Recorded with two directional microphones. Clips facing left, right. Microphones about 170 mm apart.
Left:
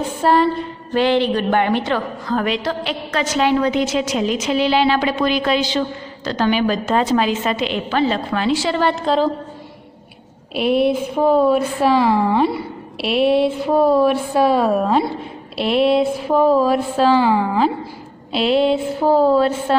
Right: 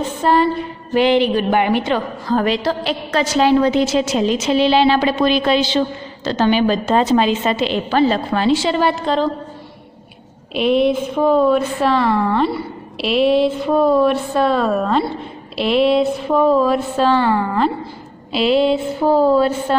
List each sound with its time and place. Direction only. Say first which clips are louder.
0.0 s a sound: even; 10° left (ahead or behind)
0.9 s speech: right 2 dB; 15° right (ahead or behind)
2.0 s a woman's voice: right 2 dB; 30° right (ahead or behind)
8.9 s speech: left 1 dB; 5° left (ahead or behind)
10.5 s a woman's voice: right 1 dB; 5° left (ahead or behind)